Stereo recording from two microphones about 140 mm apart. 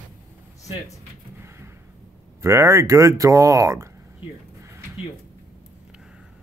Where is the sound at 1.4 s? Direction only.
20° right (ahead or behind).